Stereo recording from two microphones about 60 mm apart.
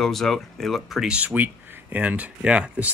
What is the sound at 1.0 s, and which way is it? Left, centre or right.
Speech, right.